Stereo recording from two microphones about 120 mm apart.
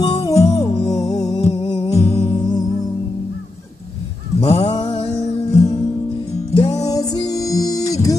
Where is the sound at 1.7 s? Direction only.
60° left (ahead or behind).